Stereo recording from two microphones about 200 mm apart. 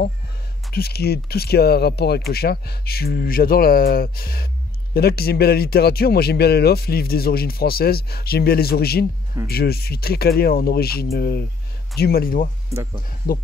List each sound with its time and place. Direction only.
0.7 s speech: 55° left (ahead or behind)